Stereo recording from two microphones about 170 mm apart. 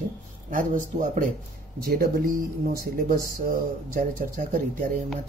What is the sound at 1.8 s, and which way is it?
Speech, 60° right (ahead or behind).